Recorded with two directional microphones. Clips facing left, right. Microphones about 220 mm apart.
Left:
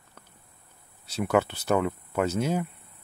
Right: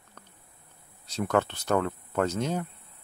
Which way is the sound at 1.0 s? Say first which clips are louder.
Left 2 dB; 10° left (ahead or behind).